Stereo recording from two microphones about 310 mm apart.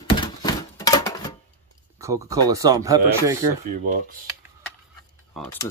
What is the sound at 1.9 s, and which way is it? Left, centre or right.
Speech, centre.